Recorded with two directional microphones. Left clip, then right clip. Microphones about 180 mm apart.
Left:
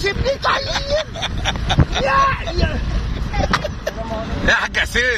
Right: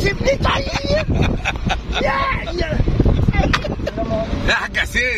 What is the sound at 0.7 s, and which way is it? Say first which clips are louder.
Speech: even; centre (ahead or behind).